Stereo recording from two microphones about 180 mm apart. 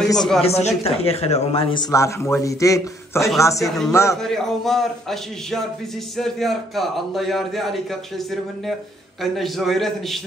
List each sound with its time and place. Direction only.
0.0 s speech: centre (ahead or behind)
0.4 s a man's voice: 35° left (ahead or behind); by 4.2 s 15° left (ahead or behind)
4.2 s a man's voice: centre (ahead or behind)